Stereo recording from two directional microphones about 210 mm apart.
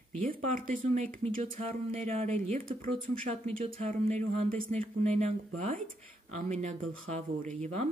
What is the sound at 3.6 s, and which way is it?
Speech, 30° right (ahead or behind).